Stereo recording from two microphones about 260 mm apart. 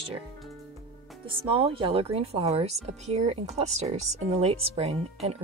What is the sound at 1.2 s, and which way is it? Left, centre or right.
Speech, centre.